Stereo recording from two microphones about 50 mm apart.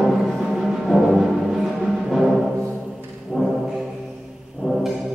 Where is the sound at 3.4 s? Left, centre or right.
Centre.